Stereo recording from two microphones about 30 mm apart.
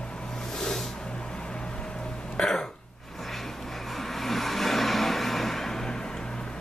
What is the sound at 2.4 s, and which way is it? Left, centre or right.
Throat clearing, left.